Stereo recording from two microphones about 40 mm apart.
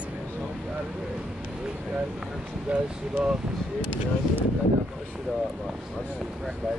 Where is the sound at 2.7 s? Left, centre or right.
Right.